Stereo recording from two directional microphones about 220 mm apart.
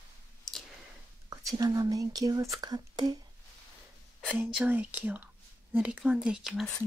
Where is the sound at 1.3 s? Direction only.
15° right (ahead or behind).